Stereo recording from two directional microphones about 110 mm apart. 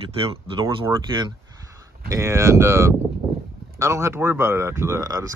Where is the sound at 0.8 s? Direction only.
45° right (ahead or behind).